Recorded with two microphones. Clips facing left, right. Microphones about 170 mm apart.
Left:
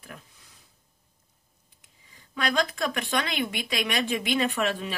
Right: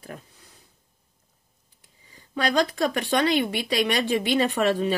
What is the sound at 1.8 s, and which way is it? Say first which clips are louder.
Speech: right 4 dB; 35° right (ahead or behind).